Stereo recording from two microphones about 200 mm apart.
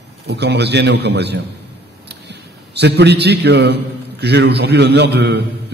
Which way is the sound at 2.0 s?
55° right (ahead or behind).